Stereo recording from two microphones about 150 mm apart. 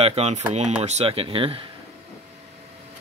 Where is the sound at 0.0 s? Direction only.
45° right (ahead or behind).